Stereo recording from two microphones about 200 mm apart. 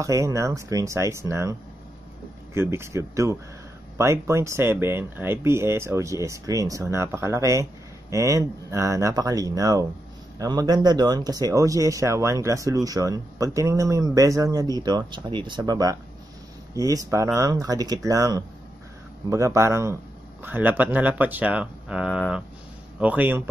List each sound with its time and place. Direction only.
0.0 s speech: 15° right (ahead or behind)